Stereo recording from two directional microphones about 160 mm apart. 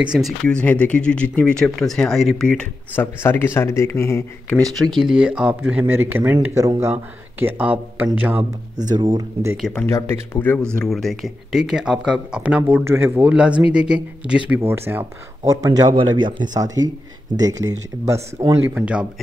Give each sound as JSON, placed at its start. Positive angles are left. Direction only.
{"t": 0.0, "sound": "speech", "side_deg": -5}
{"t": 0.4, "sound": "speech", "side_deg": 5}
{"t": 5.0, "sound": "speech", "side_deg": -5}
{"t": 8.9, "sound": "speech", "side_deg": -25}
{"t": 9.6, "sound": "speech", "side_deg": 0}
{"t": 9.8, "sound": "speech", "side_deg": 15}
{"t": 10.9, "sound": "speech", "side_deg": 0}
{"t": 18.8, "sound": "speech", "side_deg": -5}